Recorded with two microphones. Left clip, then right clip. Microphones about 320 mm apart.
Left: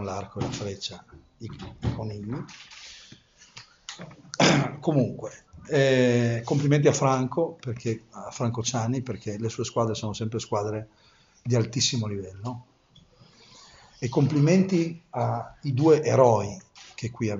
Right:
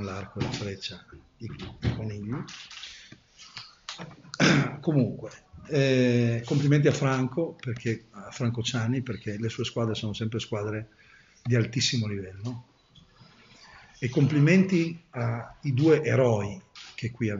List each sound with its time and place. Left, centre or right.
0.1 s speech: centre
4.3 s beatboxing: centre
5.7 s speech: left
13.6 s a sound: centre
14.2 s speech: centre
14.8 s speech: left
15.6 s speech: centre